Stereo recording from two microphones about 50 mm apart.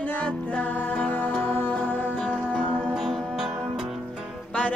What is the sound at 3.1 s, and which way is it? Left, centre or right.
Music, centre.